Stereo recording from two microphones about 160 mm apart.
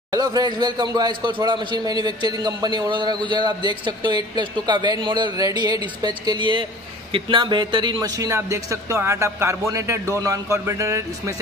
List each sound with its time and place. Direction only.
0.1 s a man's voice: 25° right (ahead or behind)